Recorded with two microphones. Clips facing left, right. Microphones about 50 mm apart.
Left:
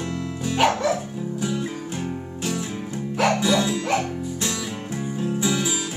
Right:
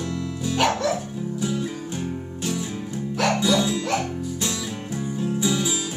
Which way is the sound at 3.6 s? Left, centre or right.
Left.